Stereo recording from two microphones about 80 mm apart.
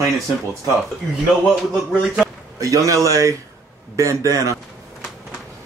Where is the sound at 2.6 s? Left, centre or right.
Right.